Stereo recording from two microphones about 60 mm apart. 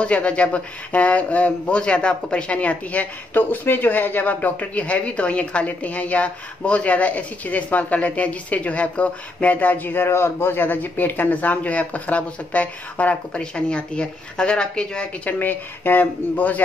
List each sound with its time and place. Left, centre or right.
0.0 s speech: centre